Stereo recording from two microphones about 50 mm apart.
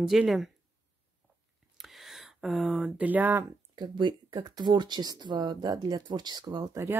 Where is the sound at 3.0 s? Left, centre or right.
Right.